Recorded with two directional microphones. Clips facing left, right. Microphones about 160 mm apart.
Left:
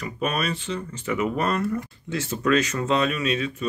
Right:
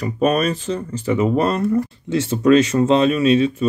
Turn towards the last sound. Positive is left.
turn(degrees=-30)  # may be behind; listen again after turning